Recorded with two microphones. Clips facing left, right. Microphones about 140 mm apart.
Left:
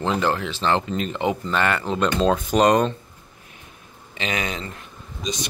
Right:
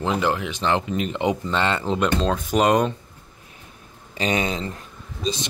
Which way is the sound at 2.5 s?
10° right (ahead or behind).